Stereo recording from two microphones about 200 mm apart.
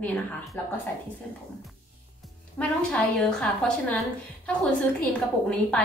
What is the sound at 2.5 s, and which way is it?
A woman's voice, 5° left (ahead or behind).